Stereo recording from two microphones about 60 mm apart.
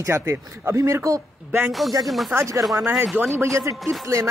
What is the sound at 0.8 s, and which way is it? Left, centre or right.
Speech, right.